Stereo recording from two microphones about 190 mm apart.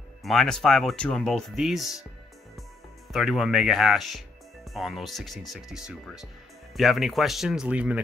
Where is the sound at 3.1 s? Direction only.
Centre (ahead or behind).